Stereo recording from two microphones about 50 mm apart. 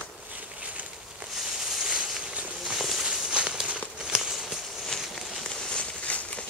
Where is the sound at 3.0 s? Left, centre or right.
Centre.